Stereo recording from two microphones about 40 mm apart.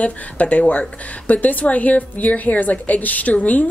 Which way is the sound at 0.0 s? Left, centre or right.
Left.